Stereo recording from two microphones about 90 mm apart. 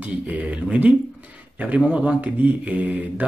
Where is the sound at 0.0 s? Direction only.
15° right (ahead or behind).